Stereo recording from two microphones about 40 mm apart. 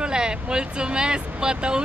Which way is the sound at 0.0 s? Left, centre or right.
Right.